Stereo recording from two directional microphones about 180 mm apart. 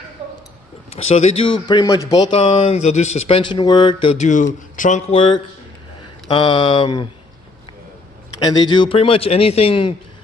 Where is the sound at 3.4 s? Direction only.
25° left (ahead or behind).